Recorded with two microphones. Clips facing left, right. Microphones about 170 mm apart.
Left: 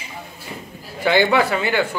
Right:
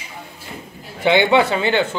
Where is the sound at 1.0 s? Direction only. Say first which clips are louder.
Right 2 dB; 20° right (ahead or behind).